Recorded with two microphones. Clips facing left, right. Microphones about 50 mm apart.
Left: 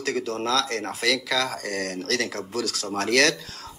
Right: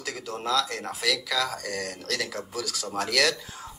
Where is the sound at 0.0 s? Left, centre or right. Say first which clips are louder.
Left 6 dB; left.